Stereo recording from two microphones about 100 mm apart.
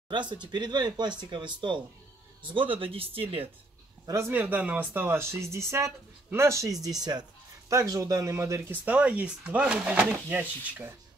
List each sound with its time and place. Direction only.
0.3 s speech: 50° right (ahead or behind); by 3.4 s 70° right (ahead or behind)
4.0 s a man's voice: 30° right (ahead or behind)
4.3 s speech: 15° right (ahead or behind); by 7.2 s 45° right (ahead or behind)
7.7 s speech: 35° right (ahead or behind)
8.8 s speech: 15° right (ahead or behind)